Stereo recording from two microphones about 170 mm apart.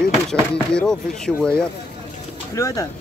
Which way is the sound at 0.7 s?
5° left (ahead or behind).